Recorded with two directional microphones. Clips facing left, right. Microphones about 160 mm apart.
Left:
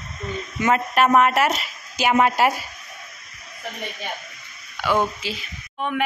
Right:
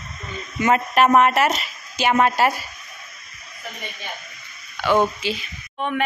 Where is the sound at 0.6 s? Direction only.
5° right (ahead or behind).